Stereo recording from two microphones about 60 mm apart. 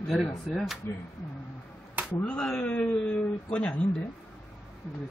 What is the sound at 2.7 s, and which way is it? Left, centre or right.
Speech, left.